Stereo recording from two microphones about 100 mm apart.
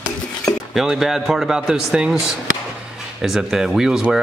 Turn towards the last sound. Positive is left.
turn(degrees=-5)  # may be behind; listen again after turning